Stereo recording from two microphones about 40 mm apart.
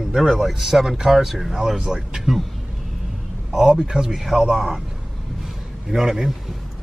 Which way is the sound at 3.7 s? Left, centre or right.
Right.